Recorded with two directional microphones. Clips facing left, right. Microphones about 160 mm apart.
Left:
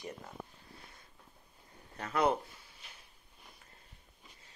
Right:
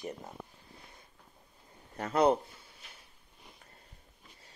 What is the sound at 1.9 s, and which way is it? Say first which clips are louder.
Speech: right 4 dB; 30° right (ahead or behind).